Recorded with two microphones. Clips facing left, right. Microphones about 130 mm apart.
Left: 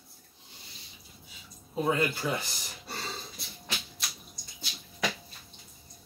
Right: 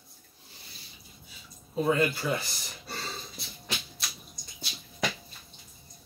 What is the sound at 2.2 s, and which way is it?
Speech, 25° left (ahead or behind).